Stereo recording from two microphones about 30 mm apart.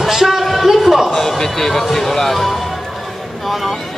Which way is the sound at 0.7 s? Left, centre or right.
Centre.